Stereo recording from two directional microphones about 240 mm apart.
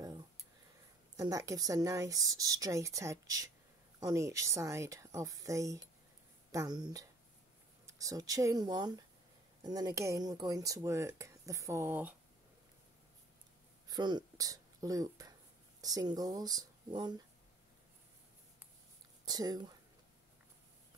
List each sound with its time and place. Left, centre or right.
1.1 s speech: centre
13.8 s speech: centre
19.2 s speech: centre